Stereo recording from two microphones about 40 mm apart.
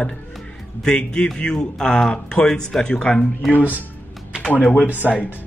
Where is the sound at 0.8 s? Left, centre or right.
Centre.